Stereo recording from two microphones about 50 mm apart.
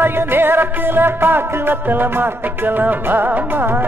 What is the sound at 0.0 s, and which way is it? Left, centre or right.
Music, right.